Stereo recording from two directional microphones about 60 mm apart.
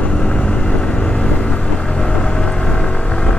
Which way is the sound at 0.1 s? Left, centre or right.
Centre.